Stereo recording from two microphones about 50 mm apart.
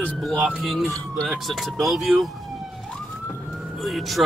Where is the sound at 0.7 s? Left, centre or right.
Centre.